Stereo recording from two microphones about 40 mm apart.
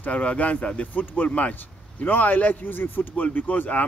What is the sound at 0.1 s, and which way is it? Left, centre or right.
Speech, left.